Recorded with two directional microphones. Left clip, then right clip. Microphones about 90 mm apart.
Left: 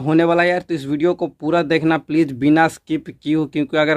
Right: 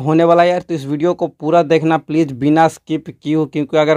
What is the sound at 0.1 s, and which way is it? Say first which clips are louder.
Speech: right 4 dB; 25° right (ahead or behind).